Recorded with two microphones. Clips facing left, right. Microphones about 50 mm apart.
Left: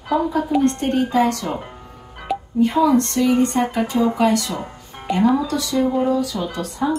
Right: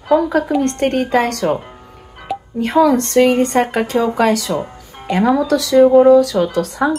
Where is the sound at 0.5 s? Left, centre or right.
Right.